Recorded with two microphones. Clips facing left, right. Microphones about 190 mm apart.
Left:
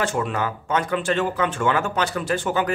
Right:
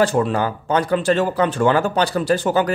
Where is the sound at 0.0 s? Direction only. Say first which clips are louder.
Right 6 dB; 35° right (ahead or behind).